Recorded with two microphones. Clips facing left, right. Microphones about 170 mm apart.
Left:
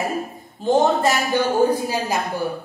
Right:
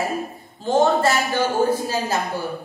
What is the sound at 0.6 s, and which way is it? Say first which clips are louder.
A woman's voice: even; 20° left (ahead or behind).